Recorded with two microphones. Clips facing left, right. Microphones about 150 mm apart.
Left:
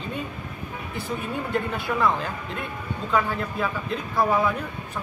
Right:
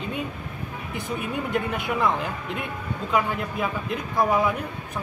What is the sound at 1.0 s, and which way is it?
A man's voice, 15° right (ahead or behind).